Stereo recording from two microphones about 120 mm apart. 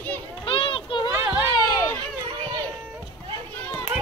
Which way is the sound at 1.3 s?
30° left (ahead or behind).